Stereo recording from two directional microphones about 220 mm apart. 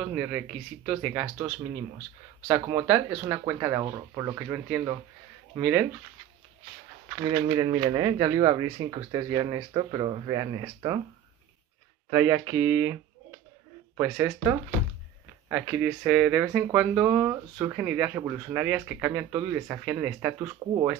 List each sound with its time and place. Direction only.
0.0 s speech: 5° right (ahead or behind)
2.4 s speech: 15° right (ahead or behind)
7.2 s speech: 20° right (ahead or behind)
12.1 s speech: 10° right (ahead or behind)